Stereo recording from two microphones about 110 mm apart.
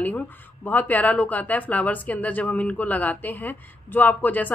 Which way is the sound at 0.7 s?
15° left (ahead or behind).